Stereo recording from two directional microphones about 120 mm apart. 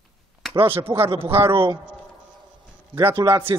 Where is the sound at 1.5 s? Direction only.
45° right (ahead or behind).